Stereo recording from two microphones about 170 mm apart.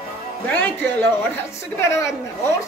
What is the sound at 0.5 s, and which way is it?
A woman's voice, 10° left (ahead or behind).